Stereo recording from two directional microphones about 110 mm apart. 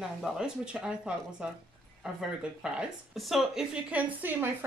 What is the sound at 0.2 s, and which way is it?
Speech, 10° right (ahead or behind).